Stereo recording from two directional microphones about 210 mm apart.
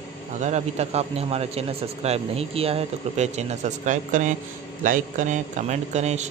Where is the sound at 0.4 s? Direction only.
35° right (ahead or behind).